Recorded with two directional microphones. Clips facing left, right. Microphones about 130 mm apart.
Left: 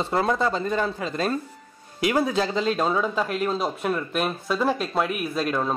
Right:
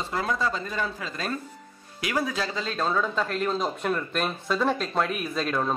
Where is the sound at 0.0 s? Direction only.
30° left (ahead or behind).